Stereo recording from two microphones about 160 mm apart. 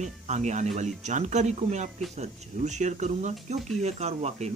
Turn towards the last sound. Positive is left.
turn(degrees=-40)  # may be behind; listen again after turning